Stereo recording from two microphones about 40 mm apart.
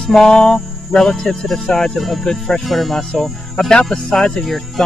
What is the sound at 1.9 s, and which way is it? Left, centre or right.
Speech, centre.